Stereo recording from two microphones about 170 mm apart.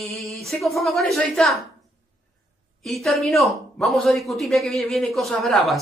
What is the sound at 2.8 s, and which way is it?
Speech, centre (ahead or behind).